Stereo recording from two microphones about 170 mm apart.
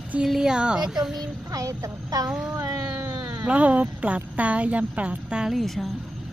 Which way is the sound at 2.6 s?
15° right (ahead or behind).